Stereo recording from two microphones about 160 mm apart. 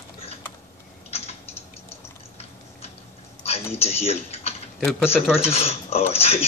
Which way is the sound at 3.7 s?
40° left (ahead or behind).